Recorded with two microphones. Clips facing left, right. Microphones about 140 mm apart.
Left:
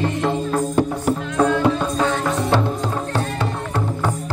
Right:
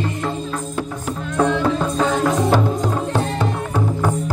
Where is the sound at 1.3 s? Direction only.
Centre (ahead or behind).